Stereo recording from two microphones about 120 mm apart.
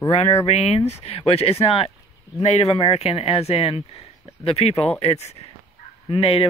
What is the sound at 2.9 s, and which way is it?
Speech, 55° left (ahead or behind).